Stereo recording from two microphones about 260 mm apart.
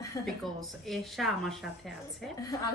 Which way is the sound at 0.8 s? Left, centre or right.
Centre.